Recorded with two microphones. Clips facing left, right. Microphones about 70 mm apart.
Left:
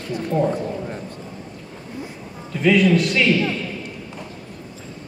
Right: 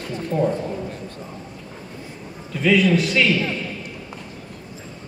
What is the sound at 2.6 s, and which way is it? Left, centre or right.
Speech, centre.